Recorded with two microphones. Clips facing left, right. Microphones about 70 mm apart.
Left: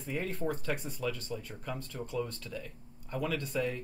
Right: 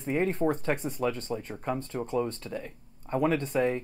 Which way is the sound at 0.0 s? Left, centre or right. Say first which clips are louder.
Right 8 dB; right.